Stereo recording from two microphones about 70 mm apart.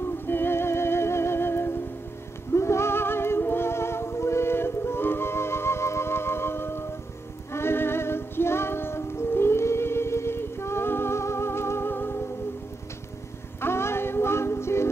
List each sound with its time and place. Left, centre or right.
0.3 s music: left
13.6 s music: left